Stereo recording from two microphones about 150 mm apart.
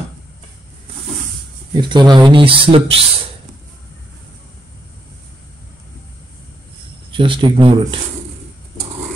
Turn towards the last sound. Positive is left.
turn(degrees=-35)  # may be behind; listen again after turning